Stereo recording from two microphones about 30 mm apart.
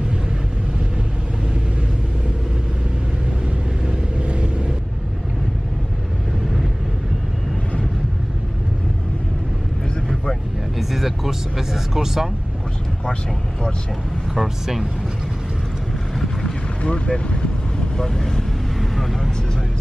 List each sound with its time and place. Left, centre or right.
3.8 s vehicle: right
10.8 s vehicle: centre
14.3 s speech: centre
16.8 s boat: left
17.9 s speech: centre
18.8 s vehicle: centre